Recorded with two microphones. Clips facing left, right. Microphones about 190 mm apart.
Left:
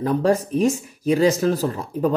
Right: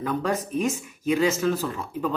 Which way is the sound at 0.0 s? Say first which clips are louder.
Left 7 dB; 35° left (ahead or behind).